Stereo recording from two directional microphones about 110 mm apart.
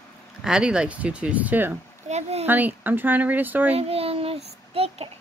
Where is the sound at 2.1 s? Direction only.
75° right (ahead or behind).